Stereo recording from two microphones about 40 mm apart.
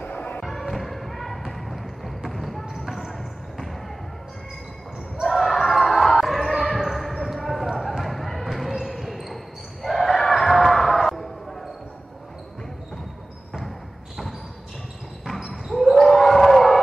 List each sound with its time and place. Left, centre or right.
0.0 s music: left
0.4 s music: centre
1.5 s basketball bounce: centre
5.2 s basketball bounce: centre
15.5 s basketball bounce: centre